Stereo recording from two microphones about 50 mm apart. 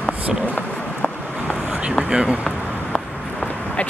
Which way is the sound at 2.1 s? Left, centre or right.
Centre.